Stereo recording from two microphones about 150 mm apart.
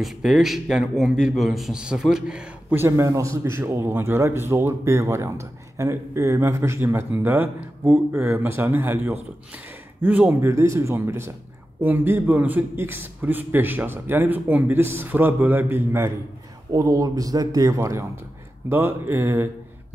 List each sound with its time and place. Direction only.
0.0 s a man's voice: centre (ahead or behind)